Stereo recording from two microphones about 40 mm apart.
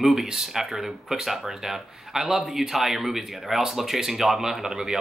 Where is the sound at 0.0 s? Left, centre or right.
Centre.